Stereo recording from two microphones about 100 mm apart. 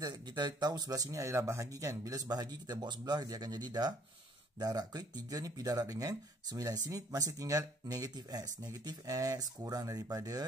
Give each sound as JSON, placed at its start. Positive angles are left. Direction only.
{"t": 0.0, "sound": "speech", "side_deg": -45}